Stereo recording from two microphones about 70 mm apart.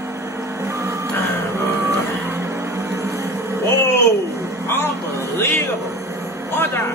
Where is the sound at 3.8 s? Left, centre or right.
Left.